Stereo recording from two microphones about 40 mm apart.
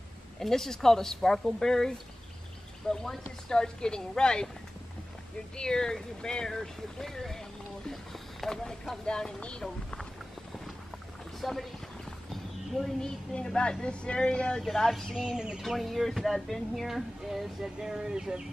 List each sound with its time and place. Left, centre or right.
0.4 s speech: centre
5.6 s speech: centre
9.0 s speech: centre
11.4 s speech: centre
12.3 s a sound: centre
13.0 s speech: left
14.7 s speech: centre
15.1 s speech: centre
15.6 s speech: centre
16.8 s speech: centre